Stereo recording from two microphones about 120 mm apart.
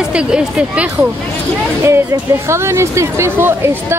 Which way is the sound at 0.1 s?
5° right (ahead or behind).